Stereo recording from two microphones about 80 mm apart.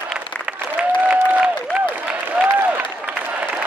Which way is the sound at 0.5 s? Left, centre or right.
Centre.